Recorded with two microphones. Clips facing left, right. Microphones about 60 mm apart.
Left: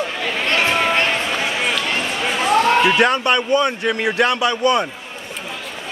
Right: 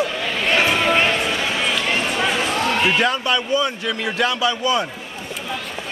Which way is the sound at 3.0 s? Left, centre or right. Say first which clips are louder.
Left 3 dB; left.